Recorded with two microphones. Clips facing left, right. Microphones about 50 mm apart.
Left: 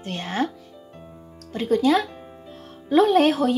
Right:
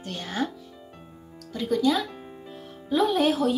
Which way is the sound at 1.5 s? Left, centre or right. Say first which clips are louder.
Left 4 dB; left.